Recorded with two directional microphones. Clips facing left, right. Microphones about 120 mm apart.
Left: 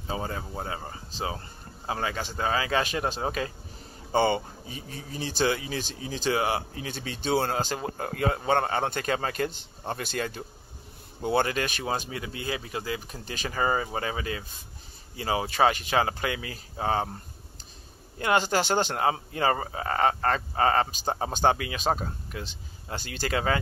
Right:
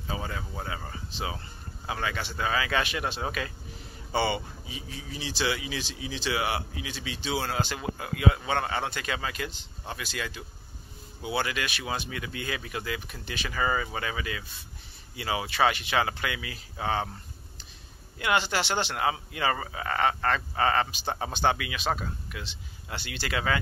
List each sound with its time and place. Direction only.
0.0 s speech: 35° left (ahead or behind)
4.1 s speech: 45° left (ahead or behind)